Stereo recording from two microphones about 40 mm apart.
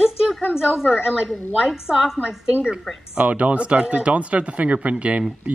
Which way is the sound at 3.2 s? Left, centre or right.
Right.